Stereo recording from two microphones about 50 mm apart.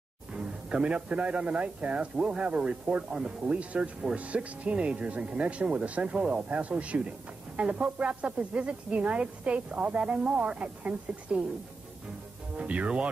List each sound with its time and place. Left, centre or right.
0.3 s speech: centre
12.5 s speech: right